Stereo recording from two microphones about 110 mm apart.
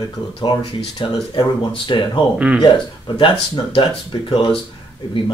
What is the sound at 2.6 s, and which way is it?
Speech, 40° left (ahead or behind).